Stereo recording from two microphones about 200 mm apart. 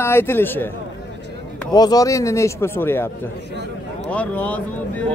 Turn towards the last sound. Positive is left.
turn(degrees=5)  # may be behind; listen again after turning